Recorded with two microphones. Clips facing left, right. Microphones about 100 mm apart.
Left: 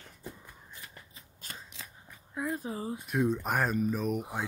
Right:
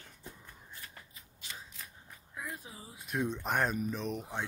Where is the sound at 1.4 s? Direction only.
45° left (ahead or behind).